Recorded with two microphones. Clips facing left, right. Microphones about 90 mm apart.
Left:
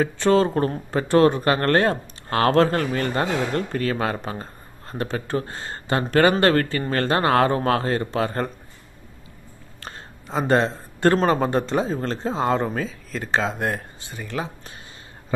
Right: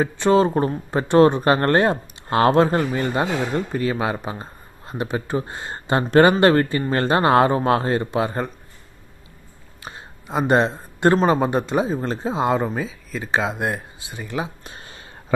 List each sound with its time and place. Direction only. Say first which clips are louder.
0.0 s speech: right 1 dB; 20° right (ahead or behind)
9.8 s a sound: right 2 dB; 10° right (ahead or behind)
11.2 s speech: right 1 dB; 15° right (ahead or behind)